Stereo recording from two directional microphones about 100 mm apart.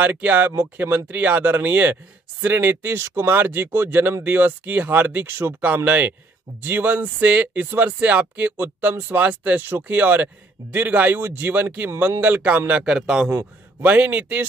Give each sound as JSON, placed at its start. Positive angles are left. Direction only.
{"t": 0.0, "sound": "speech", "side_deg": -15}
{"t": 13.3, "sound": "a man's voice", "side_deg": -35}
{"t": 13.8, "sound": "speech", "side_deg": -15}